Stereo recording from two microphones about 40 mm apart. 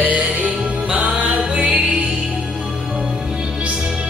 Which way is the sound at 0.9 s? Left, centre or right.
Right.